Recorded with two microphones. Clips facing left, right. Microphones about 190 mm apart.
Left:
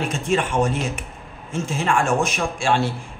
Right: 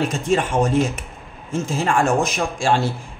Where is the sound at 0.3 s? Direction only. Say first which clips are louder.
Right 2 dB; 40° right (ahead or behind).